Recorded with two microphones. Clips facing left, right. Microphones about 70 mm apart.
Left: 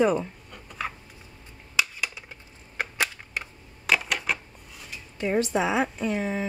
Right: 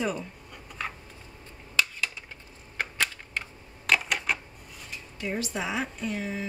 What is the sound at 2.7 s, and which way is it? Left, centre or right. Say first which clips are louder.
Typewriter: left 1 dB; centre.